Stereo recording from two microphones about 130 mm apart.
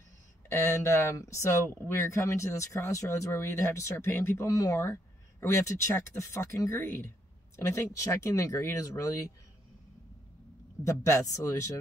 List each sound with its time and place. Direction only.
0.5 s speech: 25° left (ahead or behind)
10.8 s speech: 25° left (ahead or behind)